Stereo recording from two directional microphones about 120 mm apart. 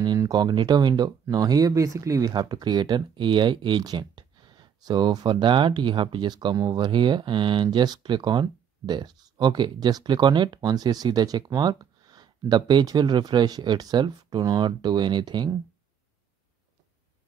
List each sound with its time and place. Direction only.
0.0 s speech: 35° right (ahead or behind)